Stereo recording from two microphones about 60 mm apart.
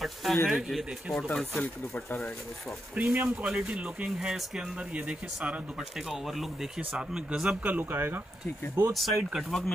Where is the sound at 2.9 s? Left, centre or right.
Right.